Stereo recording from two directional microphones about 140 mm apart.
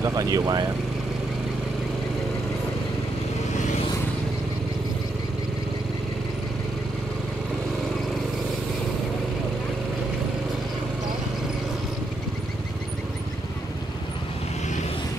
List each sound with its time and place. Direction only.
0.0 s speech: 25° right (ahead or behind)